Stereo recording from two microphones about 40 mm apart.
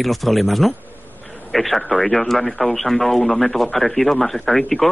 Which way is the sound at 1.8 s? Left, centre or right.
Left.